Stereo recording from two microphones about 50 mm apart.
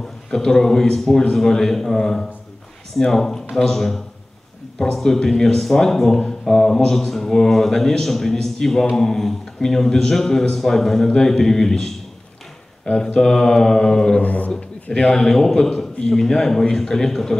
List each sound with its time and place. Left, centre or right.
0.3 s a man's voice: centre
12.9 s a man's voice: centre
14.2 s a man's voice: left
14.5 s a man's voice: centre